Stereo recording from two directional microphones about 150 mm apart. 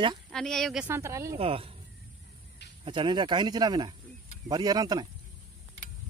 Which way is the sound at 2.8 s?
35° right (ahead or behind).